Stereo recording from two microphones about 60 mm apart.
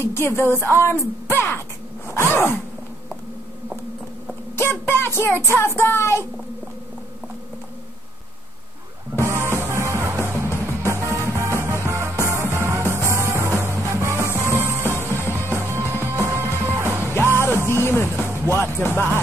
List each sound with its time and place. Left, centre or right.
0.0 s a woman's voice: left
2.1 s a sound: left
4.6 s music: left
5.8 s speech: left
9.2 s music: right
14.8 s music: left
15.7 s music: right
17.3 s music: left
18.2 s speech: left